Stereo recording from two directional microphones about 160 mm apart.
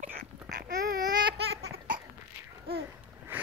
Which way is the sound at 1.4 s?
90° right.